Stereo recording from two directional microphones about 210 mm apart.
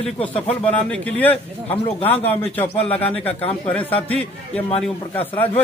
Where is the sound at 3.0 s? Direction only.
5° left (ahead or behind).